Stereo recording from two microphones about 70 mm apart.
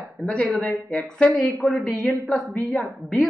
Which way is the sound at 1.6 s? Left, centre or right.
Centre.